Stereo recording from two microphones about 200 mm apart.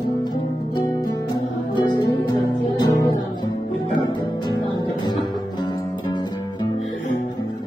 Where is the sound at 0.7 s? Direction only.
20° left (ahead or behind).